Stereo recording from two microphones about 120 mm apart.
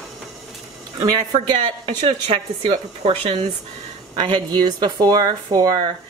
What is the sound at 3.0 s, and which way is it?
Speech, 55° right (ahead or behind).